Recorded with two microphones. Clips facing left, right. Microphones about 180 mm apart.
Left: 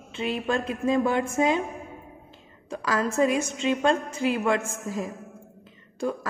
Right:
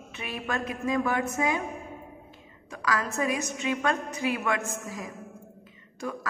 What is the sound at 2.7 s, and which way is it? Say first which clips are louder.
A woman's voice: left 3 dB; 30° left (ahead or behind).